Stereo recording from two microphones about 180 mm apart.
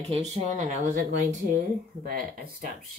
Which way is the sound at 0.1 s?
35° right (ahead or behind).